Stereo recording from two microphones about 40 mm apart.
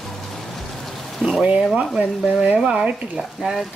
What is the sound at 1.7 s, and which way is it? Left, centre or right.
Speech, right.